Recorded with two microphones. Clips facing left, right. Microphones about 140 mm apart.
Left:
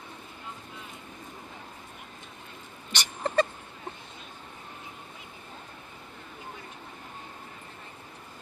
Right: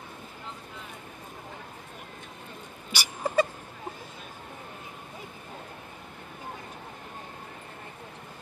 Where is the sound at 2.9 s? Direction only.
5° right (ahead or behind).